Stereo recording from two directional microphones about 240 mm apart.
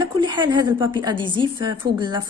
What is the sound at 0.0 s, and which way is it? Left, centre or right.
A woman's voice, centre.